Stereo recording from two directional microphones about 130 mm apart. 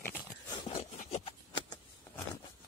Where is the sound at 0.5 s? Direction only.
45° left (ahead or behind).